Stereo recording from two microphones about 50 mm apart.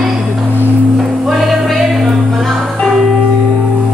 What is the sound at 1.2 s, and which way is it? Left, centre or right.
Music, centre.